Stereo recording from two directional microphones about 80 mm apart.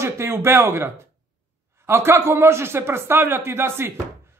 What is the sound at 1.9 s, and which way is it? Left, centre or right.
Speech, right.